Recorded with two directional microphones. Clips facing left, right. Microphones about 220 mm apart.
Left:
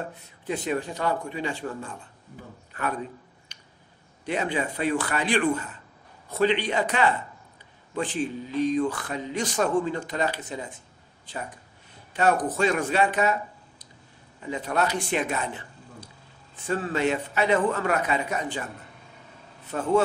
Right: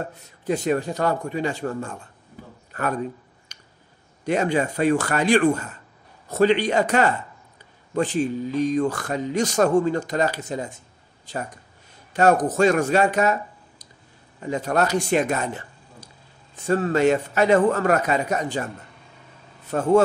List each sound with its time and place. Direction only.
0.5 s speech: 45° right (ahead or behind)
3.5 s a sound: 45° right (ahead or behind)
4.3 s speech: 45° right (ahead or behind)
19.7 s speech: 45° right (ahead or behind)